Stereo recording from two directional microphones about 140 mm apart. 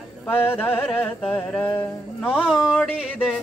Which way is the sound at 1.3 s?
10° left (ahead or behind).